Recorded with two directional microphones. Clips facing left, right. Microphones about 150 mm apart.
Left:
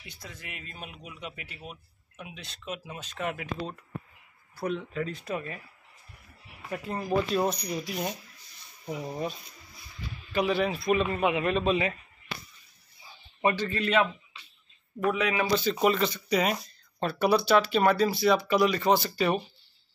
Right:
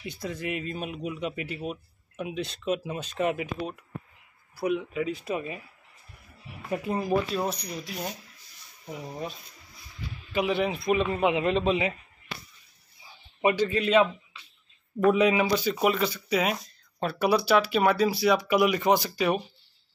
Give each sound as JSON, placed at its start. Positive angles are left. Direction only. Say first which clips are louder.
{"t": 0.2, "sound": "speech", "louder": "right 13 dB", "side_deg": -5}
{"t": 3.2, "sound": "speech", "louder": "right 5 dB", "side_deg": -15}
{"t": 6.7, "sound": "speech", "louder": "right 5 dB", "side_deg": -15}
{"t": 7.1, "sound": "speech", "louder": "left 3 dB", "side_deg": -5}
{"t": 8.8, "sound": "speech", "louder": "left 3 dB", "side_deg": 15}
{"t": 10.3, "sound": "a man's voice", "louder": "even", "side_deg": -20}
{"t": 13.4, "sound": "speech", "louder": "right 3 dB", "side_deg": -15}
{"t": 15.1, "sound": "speech", "louder": "right 4 dB", "side_deg": -20}